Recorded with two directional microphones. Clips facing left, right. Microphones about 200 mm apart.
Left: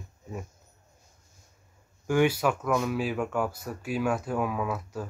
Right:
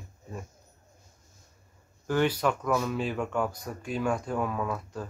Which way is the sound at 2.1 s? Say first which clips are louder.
Left 2 dB; 10° left (ahead or behind).